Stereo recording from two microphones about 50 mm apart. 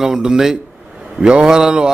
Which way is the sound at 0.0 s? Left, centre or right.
Centre.